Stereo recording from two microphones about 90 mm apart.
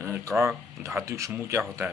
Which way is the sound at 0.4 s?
30° right (ahead or behind).